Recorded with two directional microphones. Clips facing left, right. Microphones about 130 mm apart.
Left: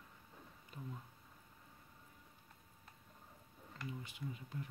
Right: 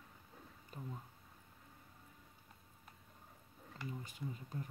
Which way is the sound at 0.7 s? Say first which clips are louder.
Right 1 dB; 40° right (ahead or behind).